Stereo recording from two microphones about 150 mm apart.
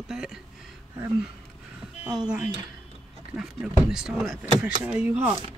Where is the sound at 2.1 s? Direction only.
5° right (ahead or behind).